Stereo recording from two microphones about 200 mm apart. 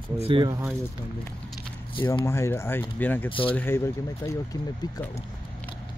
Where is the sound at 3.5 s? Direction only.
10° left (ahead or behind).